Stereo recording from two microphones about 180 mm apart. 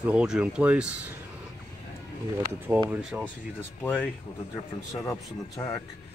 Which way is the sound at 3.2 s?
10° left (ahead or behind).